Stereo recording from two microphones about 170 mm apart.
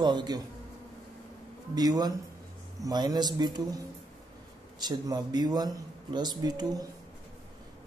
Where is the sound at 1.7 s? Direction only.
20° right (ahead or behind).